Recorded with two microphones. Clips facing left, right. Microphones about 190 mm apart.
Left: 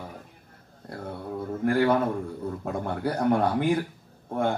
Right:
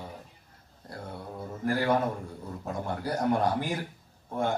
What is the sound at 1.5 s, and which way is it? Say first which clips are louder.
Speech: left 4 dB; 55° left (ahead or behind).